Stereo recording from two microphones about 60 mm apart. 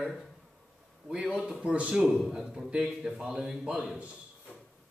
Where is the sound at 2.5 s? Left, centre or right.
Centre.